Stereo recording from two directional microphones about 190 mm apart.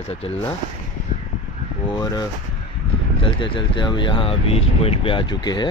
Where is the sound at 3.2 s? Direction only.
25° left (ahead or behind).